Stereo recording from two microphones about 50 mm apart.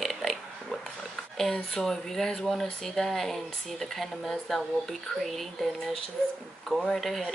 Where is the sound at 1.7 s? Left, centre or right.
Centre.